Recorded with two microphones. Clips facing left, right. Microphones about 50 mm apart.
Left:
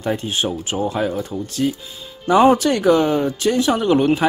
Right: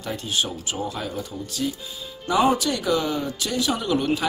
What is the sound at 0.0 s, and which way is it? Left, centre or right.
Speech, left.